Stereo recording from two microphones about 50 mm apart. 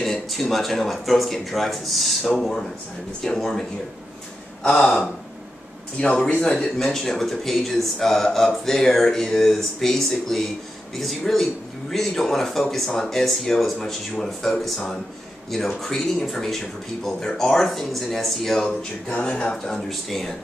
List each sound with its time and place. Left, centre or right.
0.0 s speech: centre
4.6 s speech: left; by 20.3 s centre